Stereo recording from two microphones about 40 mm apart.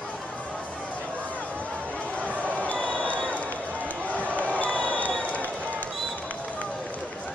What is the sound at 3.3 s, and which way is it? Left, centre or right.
Run, left.